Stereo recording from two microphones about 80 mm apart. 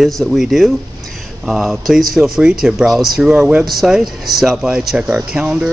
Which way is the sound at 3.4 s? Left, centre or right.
Centre.